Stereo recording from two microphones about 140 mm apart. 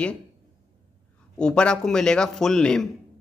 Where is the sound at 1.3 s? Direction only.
5° left (ahead or behind).